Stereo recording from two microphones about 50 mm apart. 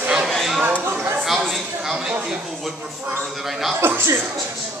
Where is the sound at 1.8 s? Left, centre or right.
Centre.